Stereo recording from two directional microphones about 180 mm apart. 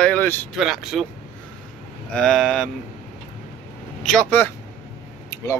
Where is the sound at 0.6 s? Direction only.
Centre (ahead or behind).